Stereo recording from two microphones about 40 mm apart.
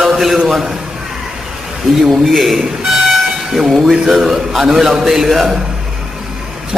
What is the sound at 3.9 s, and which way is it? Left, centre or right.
A man's voice, centre.